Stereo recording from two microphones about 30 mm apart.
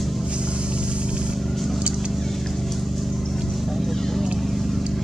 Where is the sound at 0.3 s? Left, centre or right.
Right.